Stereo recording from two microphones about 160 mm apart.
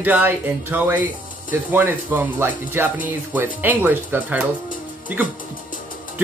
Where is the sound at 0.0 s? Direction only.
10° right (ahead or behind).